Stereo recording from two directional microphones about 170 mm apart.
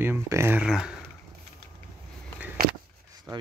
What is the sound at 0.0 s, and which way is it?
Speech, 15° right (ahead or behind).